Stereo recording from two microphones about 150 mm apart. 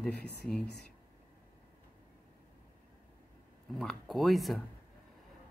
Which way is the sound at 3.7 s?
Centre (ahead or behind).